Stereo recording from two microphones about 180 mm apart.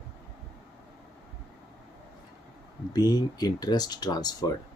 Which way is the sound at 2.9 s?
20° left (ahead or behind).